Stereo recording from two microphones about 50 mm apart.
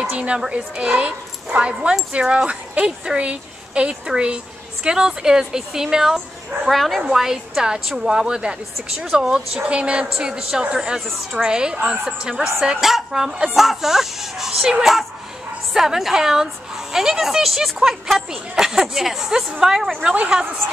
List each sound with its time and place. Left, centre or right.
0.1 s a sound: right
0.5 s a woman's voice: right
6.1 s speech: centre
7.0 s a woman's voice: centre